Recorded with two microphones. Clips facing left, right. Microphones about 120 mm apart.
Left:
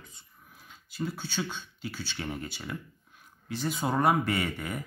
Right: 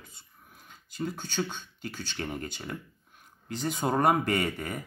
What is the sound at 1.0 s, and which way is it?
Speech, 45° right (ahead or behind).